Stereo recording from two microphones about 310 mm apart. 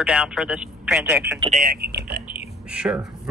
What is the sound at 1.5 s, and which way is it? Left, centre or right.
Speech, right.